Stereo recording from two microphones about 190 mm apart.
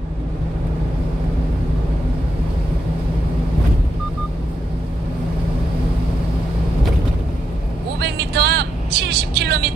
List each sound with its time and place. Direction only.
8.0 s vehicle: 60° right (ahead or behind)